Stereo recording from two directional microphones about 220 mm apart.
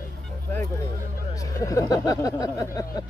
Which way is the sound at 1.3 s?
15° left (ahead or behind).